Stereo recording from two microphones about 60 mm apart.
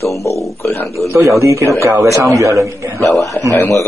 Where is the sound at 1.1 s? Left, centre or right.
Right.